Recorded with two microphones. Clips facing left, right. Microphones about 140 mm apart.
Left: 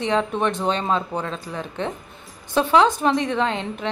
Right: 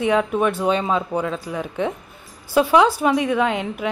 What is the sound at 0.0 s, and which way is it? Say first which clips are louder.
A woman's voice: right 3 dB; 5° right (ahead or behind).